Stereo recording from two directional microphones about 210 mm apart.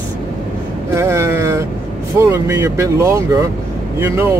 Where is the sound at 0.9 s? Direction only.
15° right (ahead or behind).